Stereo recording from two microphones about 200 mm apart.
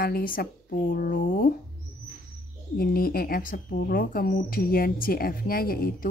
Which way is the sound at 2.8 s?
45° left (ahead or behind).